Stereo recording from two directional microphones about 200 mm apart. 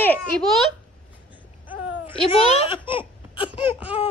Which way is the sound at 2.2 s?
30° left (ahead or behind).